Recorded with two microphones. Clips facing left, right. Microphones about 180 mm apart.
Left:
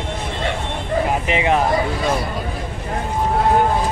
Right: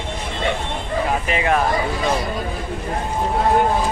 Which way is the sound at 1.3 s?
20° left (ahead or behind).